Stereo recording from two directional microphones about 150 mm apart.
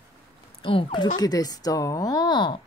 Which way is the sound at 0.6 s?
35° left (ahead or behind).